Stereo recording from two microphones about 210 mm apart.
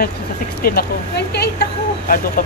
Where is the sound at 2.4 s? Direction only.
45° left (ahead or behind).